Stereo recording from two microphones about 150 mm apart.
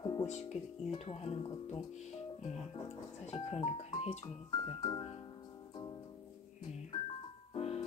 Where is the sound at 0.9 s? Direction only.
45° left (ahead or behind).